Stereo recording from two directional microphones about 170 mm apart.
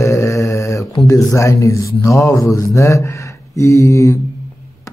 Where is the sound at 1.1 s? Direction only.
20° left (ahead or behind).